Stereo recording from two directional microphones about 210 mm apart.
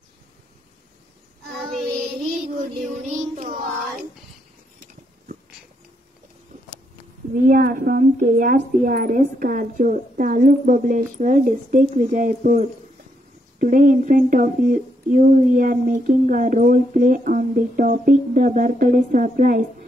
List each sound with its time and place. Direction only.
2.9 s speech: 30° right (ahead or behind)
7.3 s speech: 40° right (ahead or behind)